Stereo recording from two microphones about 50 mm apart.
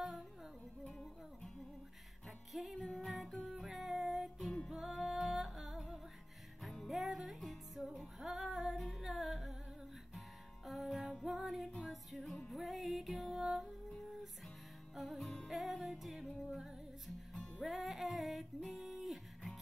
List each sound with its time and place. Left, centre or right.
0.8 s music: centre
2.2 s music: centre
15.0 s music: centre
17.3 s music: centre